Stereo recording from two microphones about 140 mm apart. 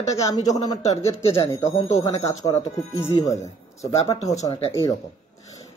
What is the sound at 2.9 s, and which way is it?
Speech, 20° left (ahead or behind).